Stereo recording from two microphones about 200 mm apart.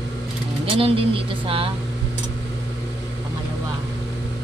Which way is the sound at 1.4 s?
25° right (ahead or behind).